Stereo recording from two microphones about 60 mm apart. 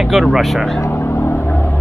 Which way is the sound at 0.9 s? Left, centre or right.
Left.